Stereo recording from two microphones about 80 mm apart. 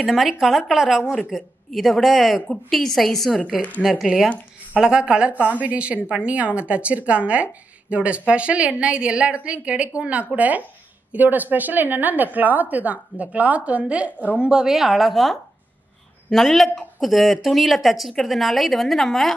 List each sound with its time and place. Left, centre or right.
0.0 s a woman's voice: centre